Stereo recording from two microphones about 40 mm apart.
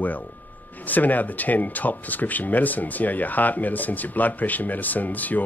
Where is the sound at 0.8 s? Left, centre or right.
Left.